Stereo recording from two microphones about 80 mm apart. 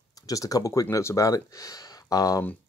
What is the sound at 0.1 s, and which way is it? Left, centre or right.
Speech, left.